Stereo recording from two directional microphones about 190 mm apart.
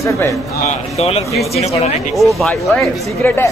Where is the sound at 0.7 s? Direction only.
35° left (ahead or behind).